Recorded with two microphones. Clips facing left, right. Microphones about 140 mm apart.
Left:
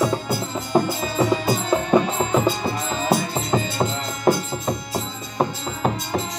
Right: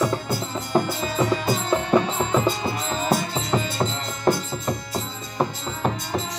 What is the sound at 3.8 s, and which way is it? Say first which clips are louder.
Music: left 2 dB; 15° left (ahead or behind).